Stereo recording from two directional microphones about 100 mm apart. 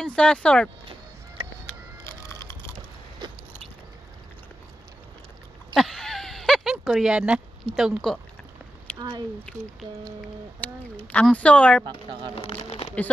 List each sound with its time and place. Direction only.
0.0 s speech: 10° left (ahead or behind)
1.4 s music: 65° right (ahead or behind)
2.0 s music: 30° left (ahead or behind)
3.2 s biting: 45° right (ahead or behind)
5.8 s a sound: centre (ahead or behind)
7.7 s speech: centre (ahead or behind)
9.5 s speech: 10° left (ahead or behind)
11.3 s speech: 10° left (ahead or behind)
12.4 s speech: 75° left (ahead or behind)